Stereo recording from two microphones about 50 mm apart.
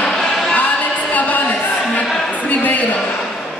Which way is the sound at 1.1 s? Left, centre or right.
Left.